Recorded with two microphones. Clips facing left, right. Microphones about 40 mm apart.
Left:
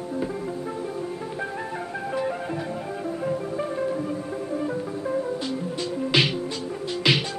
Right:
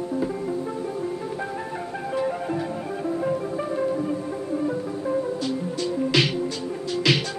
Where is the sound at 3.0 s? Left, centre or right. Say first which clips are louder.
Right 3 dB; centre.